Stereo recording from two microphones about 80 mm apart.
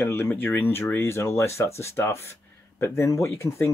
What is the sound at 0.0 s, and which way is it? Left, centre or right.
Speech, left.